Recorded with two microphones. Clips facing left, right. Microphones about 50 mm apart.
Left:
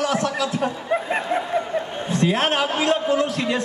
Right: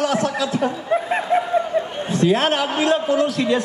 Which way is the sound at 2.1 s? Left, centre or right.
Left.